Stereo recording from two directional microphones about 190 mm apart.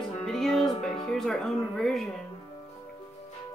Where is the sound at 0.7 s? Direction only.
25° left (ahead or behind).